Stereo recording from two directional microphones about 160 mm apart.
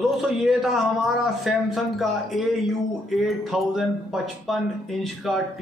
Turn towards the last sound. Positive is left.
turn(degrees=0)  # may be behind; listen again after turning